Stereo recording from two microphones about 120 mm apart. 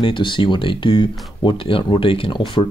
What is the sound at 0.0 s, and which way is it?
Speech, 45° left (ahead or behind).